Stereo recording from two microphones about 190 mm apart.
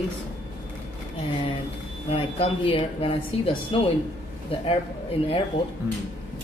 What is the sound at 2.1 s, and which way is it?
A woman's voice, 30° left (ahead or behind).